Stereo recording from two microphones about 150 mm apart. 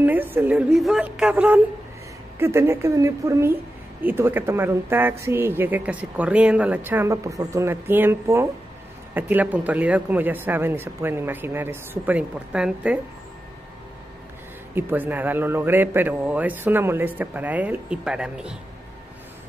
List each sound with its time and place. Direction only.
0.0 s a woman's voice: 10° right (ahead or behind)
14.8 s a woman's voice: 15° right (ahead or behind)